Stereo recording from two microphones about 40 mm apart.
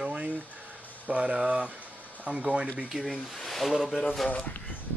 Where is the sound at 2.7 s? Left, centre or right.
Centre.